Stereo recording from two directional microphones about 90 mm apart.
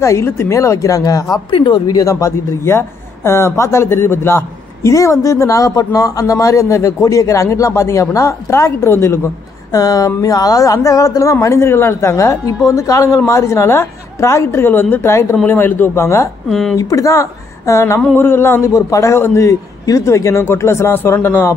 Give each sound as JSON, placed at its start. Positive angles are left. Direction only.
{"t": 0.0, "sound": "a man's voice", "side_deg": 35}
{"t": 1.5, "sound": "speech", "side_deg": 65}
{"t": 2.0, "sound": "a man's voice", "side_deg": 35}
{"t": 9.8, "sound": "a man's voice", "side_deg": 45}
{"t": 16.4, "sound": "speech", "side_deg": 5}
{"t": 16.7, "sound": "a man's voice", "side_deg": 35}